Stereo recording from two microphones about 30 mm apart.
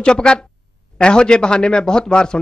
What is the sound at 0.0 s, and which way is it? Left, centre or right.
Speech, left.